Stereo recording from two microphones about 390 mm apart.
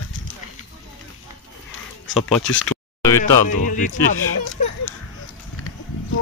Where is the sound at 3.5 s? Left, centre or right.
Centre.